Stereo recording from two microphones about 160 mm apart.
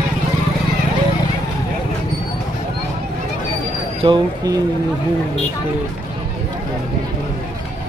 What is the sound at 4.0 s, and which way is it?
Speech, 25° right (ahead or behind).